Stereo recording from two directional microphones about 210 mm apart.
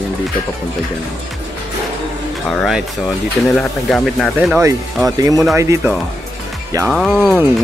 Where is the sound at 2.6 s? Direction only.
Centre (ahead or behind).